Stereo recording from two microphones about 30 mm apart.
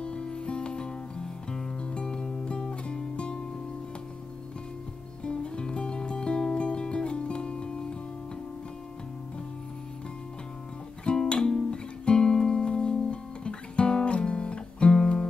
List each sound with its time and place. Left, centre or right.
0.0 s music: left
1.8 s music: left
5.2 s music: left
11.1 s music: left
11.3 s guitar: left
12.0 s music: left